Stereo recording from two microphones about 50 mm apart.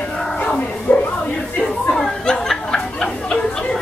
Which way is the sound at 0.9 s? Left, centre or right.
Left.